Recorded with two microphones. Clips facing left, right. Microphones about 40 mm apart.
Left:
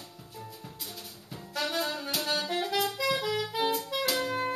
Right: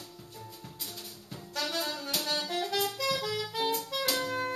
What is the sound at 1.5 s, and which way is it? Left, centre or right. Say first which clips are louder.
Saxophone: left 2 dB; centre.